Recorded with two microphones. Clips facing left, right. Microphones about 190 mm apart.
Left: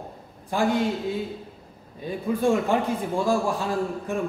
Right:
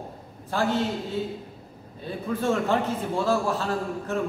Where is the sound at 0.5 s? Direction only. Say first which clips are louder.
Left 2 dB; 15° left (ahead or behind).